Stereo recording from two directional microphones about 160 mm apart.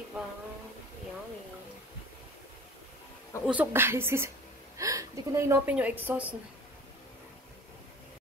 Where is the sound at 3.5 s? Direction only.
10° right (ahead or behind).